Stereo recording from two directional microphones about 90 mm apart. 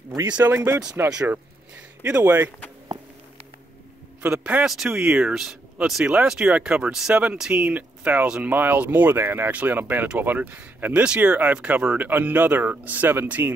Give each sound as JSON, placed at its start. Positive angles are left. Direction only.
{"t": 0.3, "sound": "speech", "side_deg": -25}
{"t": 4.4, "sound": "speech", "side_deg": -15}